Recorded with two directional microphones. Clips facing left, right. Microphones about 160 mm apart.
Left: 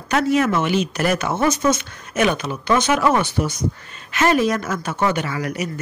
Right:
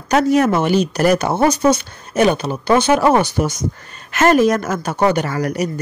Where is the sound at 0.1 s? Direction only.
40° right (ahead or behind).